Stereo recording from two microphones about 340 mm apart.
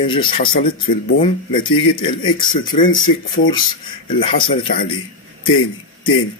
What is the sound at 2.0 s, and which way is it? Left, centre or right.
Speech, centre.